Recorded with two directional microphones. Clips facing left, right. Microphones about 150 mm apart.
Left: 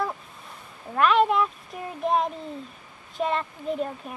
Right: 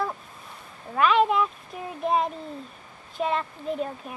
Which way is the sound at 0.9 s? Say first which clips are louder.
Even; centre (ahead or behind).